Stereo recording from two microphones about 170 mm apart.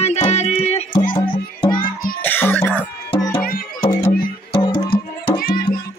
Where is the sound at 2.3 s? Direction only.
10° left (ahead or behind).